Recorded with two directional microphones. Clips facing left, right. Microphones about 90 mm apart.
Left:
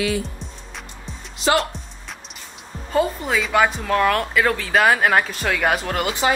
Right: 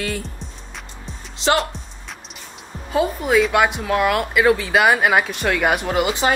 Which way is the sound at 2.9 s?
5° right (ahead or behind).